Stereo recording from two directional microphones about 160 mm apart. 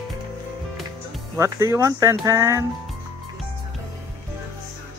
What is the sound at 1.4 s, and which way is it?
Speech, 20° right (ahead or behind).